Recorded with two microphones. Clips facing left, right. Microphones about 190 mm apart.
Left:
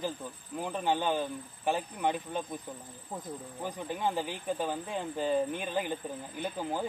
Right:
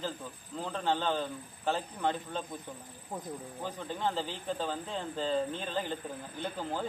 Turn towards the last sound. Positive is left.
turn(degrees=15)  # may be behind; listen again after turning